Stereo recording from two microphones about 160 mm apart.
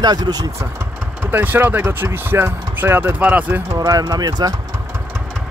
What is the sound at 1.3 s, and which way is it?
Speech, 10° right (ahead or behind).